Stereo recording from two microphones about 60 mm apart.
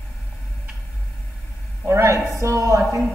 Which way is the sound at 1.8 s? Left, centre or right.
Right.